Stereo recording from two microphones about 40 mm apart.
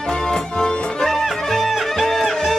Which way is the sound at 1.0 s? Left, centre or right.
Centre.